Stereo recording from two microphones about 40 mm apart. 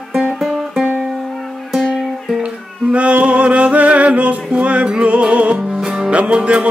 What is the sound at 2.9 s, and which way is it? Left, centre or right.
Music, right.